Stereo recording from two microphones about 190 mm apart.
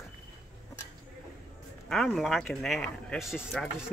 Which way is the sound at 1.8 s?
Centre (ahead or behind).